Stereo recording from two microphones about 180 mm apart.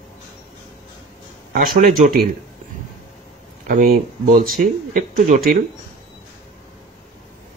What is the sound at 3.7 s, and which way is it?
Speech, 50° right (ahead or behind).